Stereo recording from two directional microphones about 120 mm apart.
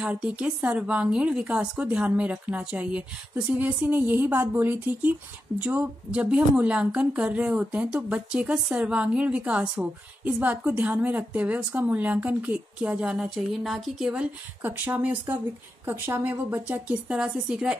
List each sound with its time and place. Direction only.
0.0 s speech: 10° right (ahead or behind)